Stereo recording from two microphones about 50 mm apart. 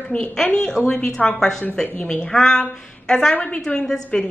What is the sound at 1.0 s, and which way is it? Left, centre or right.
A woman's voice, centre.